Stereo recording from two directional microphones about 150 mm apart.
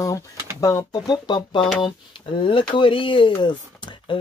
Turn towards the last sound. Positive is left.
turn(degrees=30)  # may be behind; listen again after turning